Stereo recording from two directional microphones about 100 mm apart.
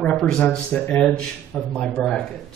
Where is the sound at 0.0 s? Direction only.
5° left (ahead or behind).